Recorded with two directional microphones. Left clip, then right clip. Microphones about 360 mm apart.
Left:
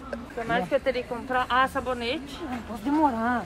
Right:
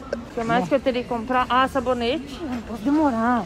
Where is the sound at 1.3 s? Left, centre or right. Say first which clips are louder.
Right 3 dB; centre.